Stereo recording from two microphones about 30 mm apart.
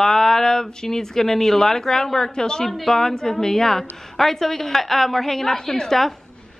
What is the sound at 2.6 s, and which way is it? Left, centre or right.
A woman's voice, centre.